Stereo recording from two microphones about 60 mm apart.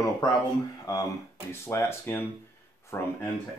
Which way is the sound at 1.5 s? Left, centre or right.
Left.